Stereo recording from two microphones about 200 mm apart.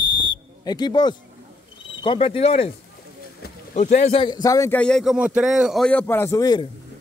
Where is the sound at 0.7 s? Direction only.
20° left (ahead or behind).